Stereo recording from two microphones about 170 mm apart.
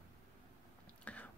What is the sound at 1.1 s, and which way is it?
Whispering, 10° left (ahead or behind).